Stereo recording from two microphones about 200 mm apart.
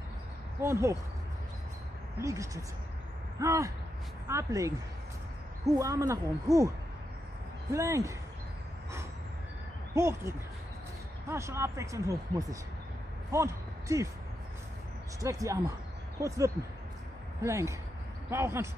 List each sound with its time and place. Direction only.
0.6 s speech: 15° right (ahead or behind)
2.1 s speech: 15° right (ahead or behind)
7.7 s speech: 15° right (ahead or behind)
9.9 s speech: 15° right (ahead or behind)
15.1 s speech: 15° right (ahead or behind)